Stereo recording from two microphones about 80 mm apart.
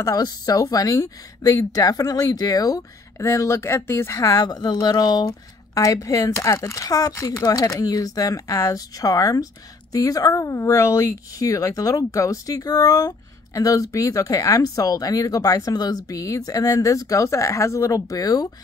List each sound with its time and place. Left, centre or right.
0.0 s speech: left
3.2 s speech: left
5.8 s speech: left
7.2 s speech: left
7.4 s speech: left